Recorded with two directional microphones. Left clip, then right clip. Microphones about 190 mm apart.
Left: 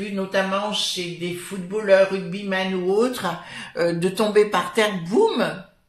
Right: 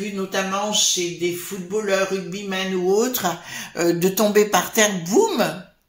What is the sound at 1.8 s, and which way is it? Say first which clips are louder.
Speech: left 7 dB; 45° right (ahead or behind).